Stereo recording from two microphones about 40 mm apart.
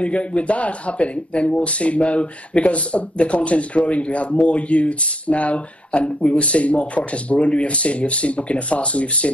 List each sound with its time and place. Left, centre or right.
0.0 s speech: left